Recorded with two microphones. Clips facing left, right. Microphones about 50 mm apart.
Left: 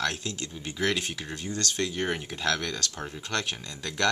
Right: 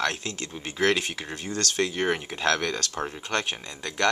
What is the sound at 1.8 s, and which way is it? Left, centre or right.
Speech, right.